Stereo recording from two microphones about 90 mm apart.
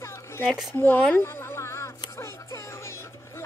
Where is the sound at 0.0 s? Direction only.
30° left (ahead or behind).